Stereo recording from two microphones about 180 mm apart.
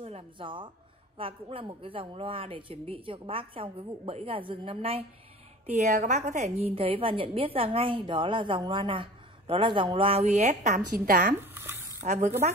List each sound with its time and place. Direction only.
0.0 s a woman's voice: 30° right (ahead or behind); by 11.3 s 50° right (ahead or behind)
11.4 s a sound: 10° right (ahead or behind)
12.0 s speech: 45° right (ahead or behind)